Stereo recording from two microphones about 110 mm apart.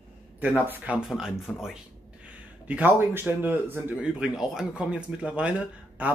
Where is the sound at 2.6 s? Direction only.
15° right (ahead or behind).